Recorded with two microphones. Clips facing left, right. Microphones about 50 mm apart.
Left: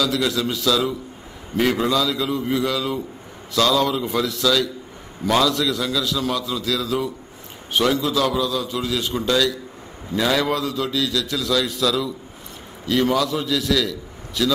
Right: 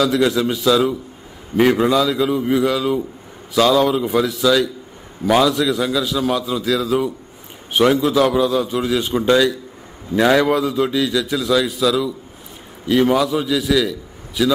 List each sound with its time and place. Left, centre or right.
0.0 s a man's voice: right
10.4 s a man's voice: centre